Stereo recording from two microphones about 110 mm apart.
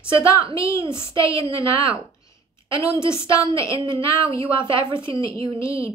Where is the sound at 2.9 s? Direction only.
25° left (ahead or behind).